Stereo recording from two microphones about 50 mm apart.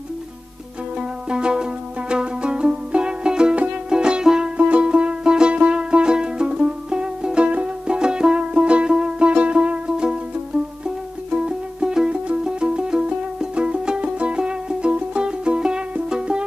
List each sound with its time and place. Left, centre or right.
1.3 s music: centre
4.6 s music: right
11.2 s music: centre